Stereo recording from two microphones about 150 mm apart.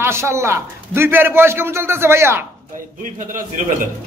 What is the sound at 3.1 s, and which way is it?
Speech, 60° right (ahead or behind).